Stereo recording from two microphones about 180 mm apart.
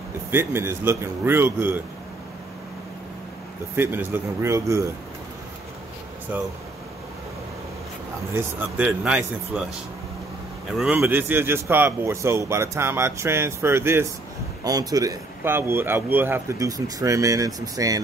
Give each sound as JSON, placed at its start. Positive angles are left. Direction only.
{"t": 0.3, "sound": "speech", "side_deg": -15}
{"t": 3.7, "sound": "speech", "side_deg": -10}
{"t": 6.3, "sound": "speech", "side_deg": -10}
{"t": 8.4, "sound": "speech", "side_deg": -10}
{"t": 10.8, "sound": "a man's voice", "side_deg": -10}